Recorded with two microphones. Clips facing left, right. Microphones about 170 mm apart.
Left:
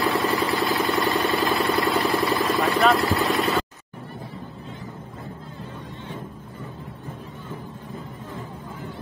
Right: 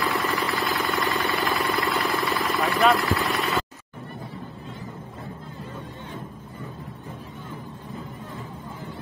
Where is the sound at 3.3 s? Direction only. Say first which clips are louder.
Left 3 dB; centre (ahead or behind).